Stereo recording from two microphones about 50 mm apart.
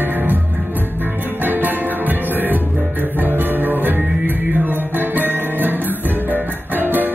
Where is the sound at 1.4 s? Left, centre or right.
Right.